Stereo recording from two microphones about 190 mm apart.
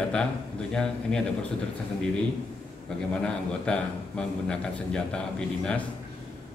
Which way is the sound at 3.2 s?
5° left (ahead or behind).